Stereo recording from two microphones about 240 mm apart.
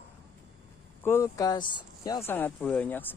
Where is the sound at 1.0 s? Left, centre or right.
Centre.